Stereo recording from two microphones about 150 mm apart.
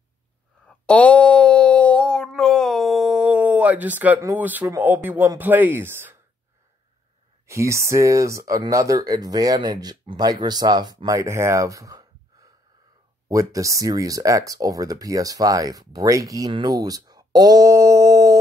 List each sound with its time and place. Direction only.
0.7 s a sound: 10° left (ahead or behind); by 4.3 s 10° right (ahead or behind)
4.3 s speech: 10° right (ahead or behind)
7.4 s speech: 20° right (ahead or behind)